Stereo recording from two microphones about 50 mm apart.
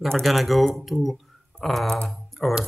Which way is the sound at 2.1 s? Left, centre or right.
Centre.